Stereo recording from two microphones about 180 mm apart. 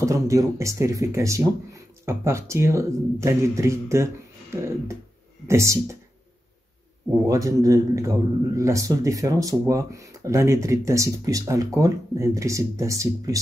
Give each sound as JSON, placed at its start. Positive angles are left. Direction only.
{"t": 0.0, "sound": "a man's voice", "side_deg": -15}
{"t": 7.2, "sound": "a man's voice", "side_deg": -20}